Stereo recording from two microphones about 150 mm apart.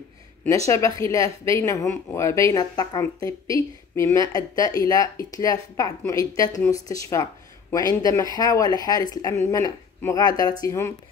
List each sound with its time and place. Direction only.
0.7 s a woman's voice: 20° left (ahead or behind)